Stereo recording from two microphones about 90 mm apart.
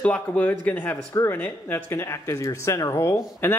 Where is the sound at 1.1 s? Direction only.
35° left (ahead or behind).